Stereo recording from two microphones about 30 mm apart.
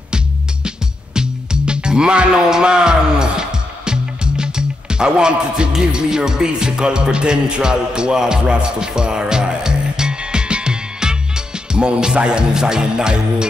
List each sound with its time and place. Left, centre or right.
0.7 s music: right